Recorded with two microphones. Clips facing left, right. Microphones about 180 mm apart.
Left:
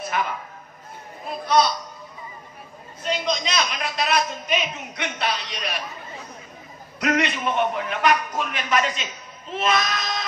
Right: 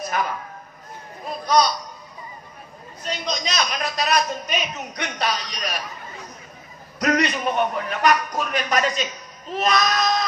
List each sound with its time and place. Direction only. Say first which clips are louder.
0.0 s music: right 1 dB; 40° right (ahead or behind)
1.4 s a sound: right 1 dB; 40° right (ahead or behind)
3.0 s a woman's voice: left 3 dB; 40° right (ahead or behind)
7.0 s a man's voice: right 2 dB; 40° right (ahead or behind)